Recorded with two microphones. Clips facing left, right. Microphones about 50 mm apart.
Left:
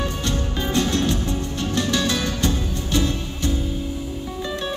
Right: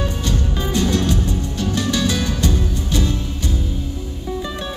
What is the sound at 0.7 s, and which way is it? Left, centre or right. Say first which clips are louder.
Music: right 2 dB; centre.